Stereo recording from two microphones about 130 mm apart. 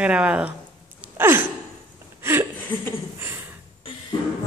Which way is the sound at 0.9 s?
15° right (ahead or behind).